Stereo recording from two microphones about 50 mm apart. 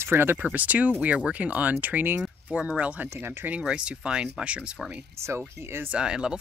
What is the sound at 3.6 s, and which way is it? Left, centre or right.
Speech, centre.